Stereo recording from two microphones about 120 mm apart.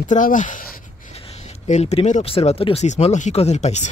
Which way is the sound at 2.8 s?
75° left (ahead or behind).